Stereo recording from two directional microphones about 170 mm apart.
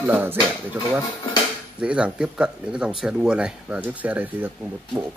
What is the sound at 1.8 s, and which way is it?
Speech, 5° right (ahead or behind).